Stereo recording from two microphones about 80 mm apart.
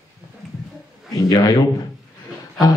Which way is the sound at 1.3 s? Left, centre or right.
Left.